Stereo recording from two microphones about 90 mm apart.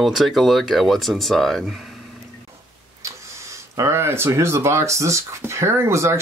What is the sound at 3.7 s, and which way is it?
Speech, 30° right (ahead or behind).